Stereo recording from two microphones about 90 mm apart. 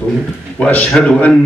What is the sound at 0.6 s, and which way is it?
Speech, 15° left (ahead or behind).